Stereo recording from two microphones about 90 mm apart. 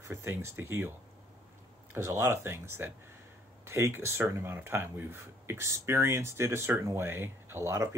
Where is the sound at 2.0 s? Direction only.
30° right (ahead or behind).